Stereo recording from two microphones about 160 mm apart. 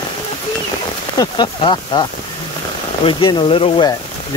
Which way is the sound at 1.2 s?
25° left (ahead or behind).